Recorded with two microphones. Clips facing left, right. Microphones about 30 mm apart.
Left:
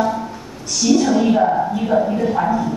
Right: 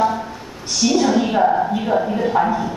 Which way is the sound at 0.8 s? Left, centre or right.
Centre.